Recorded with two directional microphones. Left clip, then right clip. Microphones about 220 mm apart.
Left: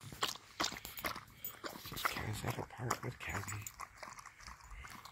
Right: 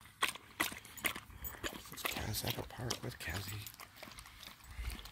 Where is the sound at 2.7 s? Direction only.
15° right (ahead or behind).